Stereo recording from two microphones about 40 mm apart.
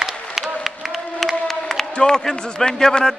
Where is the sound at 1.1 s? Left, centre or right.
Centre.